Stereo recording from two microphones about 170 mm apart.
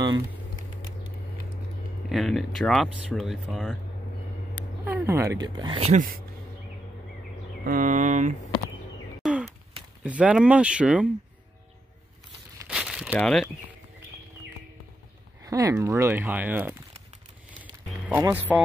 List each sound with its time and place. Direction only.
2.0 s speech: centre (ahead or behind)
4.8 s speech: 15° right (ahead or behind); by 5.9 s 30° right (ahead or behind)
7.6 s speech: 50° right (ahead or behind)
9.2 s bird: 5° right (ahead or behind)
10.0 s speech: 10° right (ahead or behind)
12.6 s crumpling: 5° right (ahead or behind)
13.1 s speech: 5° left (ahead or behind)
15.4 s a sound: 20° right (ahead or behind)
15.8 s speech: 15° right (ahead or behind)
18.0 s a man's voice: 10° right (ahead or behind)